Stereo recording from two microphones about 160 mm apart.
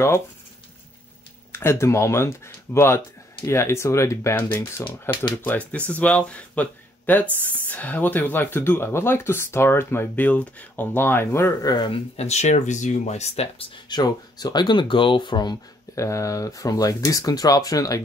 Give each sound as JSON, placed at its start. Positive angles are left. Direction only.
{"t": 1.5, "sound": "speech", "side_deg": 15}
{"t": 12.2, "sound": "speech", "side_deg": 45}
{"t": 13.8, "sound": "speech", "side_deg": 25}